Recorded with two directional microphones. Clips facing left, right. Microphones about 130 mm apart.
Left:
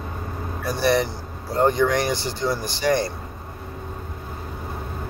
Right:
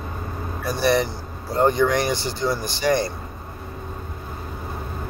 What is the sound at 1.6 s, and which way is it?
Speech, 15° right (ahead or behind).